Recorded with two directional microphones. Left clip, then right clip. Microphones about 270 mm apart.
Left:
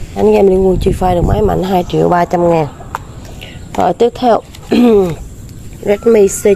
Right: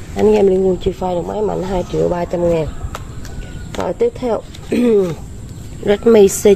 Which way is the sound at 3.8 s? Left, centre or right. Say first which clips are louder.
Left 6 dB; left.